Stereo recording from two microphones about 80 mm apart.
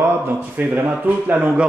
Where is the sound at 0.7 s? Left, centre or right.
Right.